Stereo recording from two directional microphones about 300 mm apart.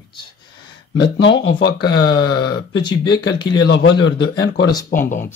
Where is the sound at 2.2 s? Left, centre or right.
Left.